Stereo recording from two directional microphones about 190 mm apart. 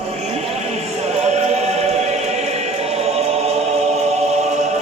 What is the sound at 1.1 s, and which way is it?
Music, 35° right (ahead or behind).